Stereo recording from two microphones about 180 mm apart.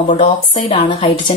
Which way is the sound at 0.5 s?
30° left (ahead or behind).